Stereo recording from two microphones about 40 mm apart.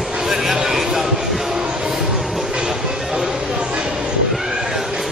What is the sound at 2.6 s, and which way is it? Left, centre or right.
Music, centre.